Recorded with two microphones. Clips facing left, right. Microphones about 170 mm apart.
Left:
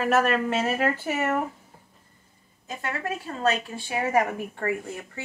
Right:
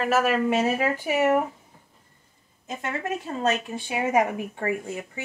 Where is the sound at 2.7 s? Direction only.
20° right (ahead or behind).